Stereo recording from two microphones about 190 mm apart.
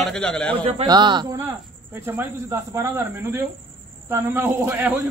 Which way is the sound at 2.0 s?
15° right (ahead or behind).